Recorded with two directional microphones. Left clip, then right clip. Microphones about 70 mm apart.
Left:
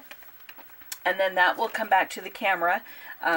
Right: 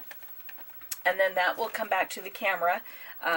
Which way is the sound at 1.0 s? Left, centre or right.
Centre.